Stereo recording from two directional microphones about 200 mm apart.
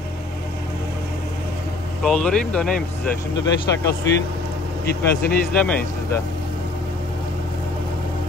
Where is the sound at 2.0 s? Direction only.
5° left (ahead or behind).